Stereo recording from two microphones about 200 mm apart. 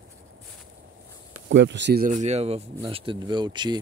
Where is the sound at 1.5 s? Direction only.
60° right (ahead or behind).